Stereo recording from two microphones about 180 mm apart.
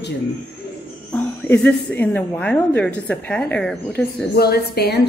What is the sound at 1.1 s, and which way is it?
A woman's voice, 5° left (ahead or behind).